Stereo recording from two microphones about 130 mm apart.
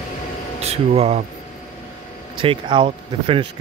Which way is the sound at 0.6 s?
50° right (ahead or behind).